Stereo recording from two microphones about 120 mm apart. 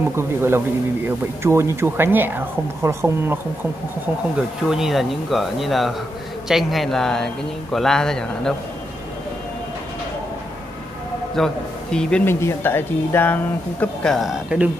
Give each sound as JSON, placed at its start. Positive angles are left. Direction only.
{"t": 0.1, "sound": "speech", "side_deg": -20}
{"t": 4.6, "sound": "speech", "side_deg": -5}
{"t": 11.3, "sound": "a man's voice", "side_deg": 5}
{"t": 12.3, "sound": "a woman's voice", "side_deg": 20}
{"t": 14.1, "sound": "speech", "side_deg": -5}